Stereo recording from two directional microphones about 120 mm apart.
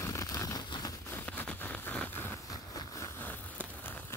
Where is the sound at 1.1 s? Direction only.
10° left (ahead or behind).